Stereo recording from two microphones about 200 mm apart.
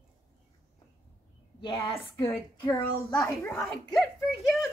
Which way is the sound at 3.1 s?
5° left (ahead or behind).